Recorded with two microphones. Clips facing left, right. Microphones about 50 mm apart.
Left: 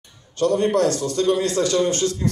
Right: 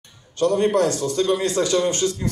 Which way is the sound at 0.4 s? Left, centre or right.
Centre.